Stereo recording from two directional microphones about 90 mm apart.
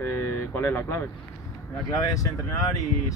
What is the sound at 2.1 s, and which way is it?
Speech, 40° left (ahead or behind).